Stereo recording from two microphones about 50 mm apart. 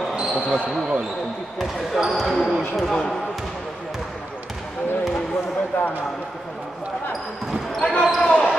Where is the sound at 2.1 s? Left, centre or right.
Centre.